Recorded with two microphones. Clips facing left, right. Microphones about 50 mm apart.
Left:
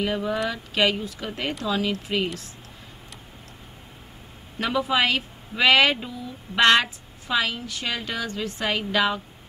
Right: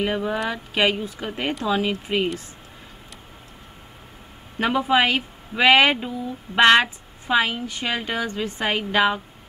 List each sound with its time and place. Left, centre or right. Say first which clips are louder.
0.0 s speech: right 1 dB; right
4.6 s speech: right 3 dB; right